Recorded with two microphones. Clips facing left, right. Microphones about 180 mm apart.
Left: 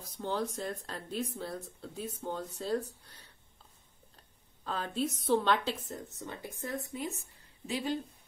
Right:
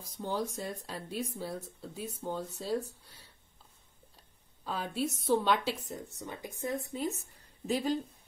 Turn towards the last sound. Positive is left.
turn(degrees=-40)  # may be behind; listen again after turning